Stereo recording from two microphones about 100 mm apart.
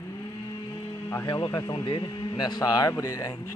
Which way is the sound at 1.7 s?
55° left (ahead or behind).